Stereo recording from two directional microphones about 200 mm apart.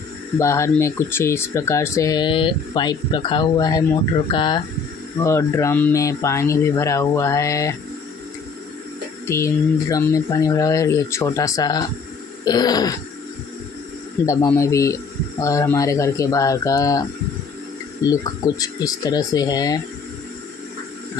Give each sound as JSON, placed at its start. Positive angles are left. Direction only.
{"t": 0.4, "sound": "speech", "side_deg": 15}
{"t": 9.3, "sound": "speech", "side_deg": 15}
{"t": 14.2, "sound": "speech", "side_deg": 15}